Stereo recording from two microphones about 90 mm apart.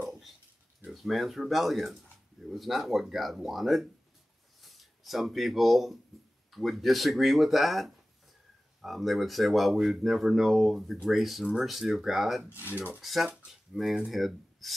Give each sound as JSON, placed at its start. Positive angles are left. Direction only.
{"t": 0.0, "sound": "a sound", "side_deg": -5}
{"t": 0.8, "sound": "speech", "side_deg": 0}
{"t": 12.5, "sound": "speech", "side_deg": -20}
{"t": 13.0, "sound": "speech", "side_deg": -5}